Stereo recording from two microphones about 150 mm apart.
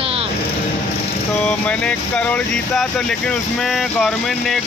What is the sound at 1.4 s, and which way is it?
Speech, 5° left (ahead or behind).